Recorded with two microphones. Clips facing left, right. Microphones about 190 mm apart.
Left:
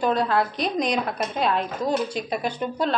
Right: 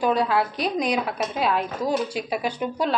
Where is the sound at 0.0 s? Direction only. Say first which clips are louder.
Even; 10° right (ahead or behind).